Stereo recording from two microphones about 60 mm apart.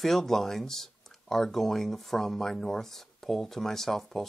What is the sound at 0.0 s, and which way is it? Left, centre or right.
Speech, centre.